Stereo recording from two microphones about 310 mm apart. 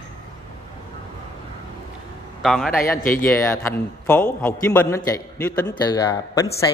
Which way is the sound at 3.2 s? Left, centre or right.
Centre.